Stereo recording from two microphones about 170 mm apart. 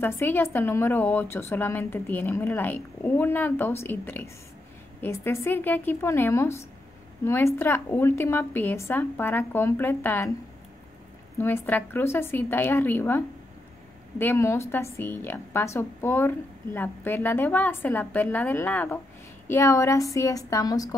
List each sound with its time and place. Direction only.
0.0 s a woman's voice: 10° left (ahead or behind)
11.3 s a woman's voice: 15° left (ahead or behind)